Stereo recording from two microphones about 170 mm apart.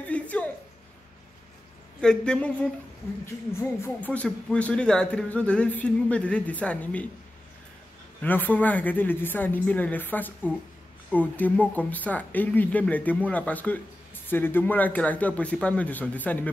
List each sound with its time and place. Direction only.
0.0 s music: 10° left (ahead or behind)
2.0 s speech: 5° left (ahead or behind)
8.2 s speech: 10° left (ahead or behind)